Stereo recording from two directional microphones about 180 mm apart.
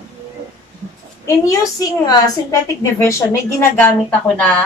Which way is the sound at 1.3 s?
15° left (ahead or behind).